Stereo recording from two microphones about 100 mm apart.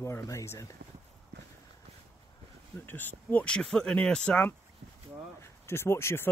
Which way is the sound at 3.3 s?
15° left (ahead or behind).